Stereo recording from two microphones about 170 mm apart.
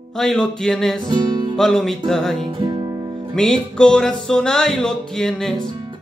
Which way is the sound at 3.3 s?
5° left (ahead or behind).